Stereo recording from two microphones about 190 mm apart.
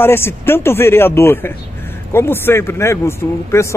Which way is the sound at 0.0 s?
10° left (ahead or behind).